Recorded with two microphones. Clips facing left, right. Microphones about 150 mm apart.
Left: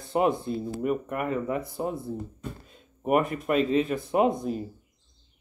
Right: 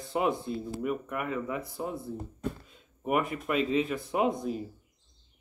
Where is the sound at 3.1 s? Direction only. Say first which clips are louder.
Left 5 dB; 45° left (ahead or behind).